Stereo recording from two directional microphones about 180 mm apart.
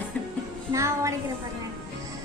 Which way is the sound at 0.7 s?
15° right (ahead or behind).